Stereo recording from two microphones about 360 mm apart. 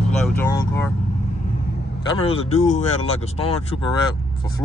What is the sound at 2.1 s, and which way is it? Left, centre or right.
Speech, centre.